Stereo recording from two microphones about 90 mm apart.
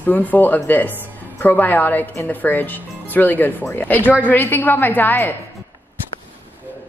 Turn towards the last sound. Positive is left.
turn(degrees=20)  # may be behind; listen again after turning